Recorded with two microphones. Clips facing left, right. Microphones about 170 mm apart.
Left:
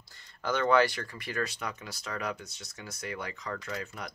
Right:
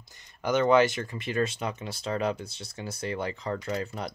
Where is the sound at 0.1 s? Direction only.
20° right (ahead or behind).